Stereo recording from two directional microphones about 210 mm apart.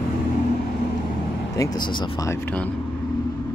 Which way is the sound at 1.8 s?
20° left (ahead or behind).